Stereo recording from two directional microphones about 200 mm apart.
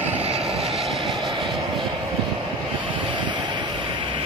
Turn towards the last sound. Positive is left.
turn(degrees=-25)  # may be behind; listen again after turning